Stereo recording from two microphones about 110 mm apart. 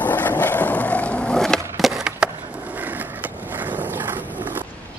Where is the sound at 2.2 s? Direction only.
10° right (ahead or behind).